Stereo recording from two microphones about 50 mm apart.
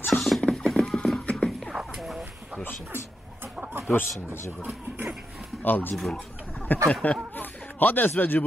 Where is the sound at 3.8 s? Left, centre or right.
Left.